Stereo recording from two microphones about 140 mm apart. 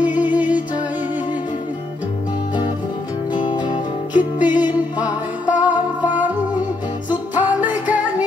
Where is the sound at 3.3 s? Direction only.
30° left (ahead or behind).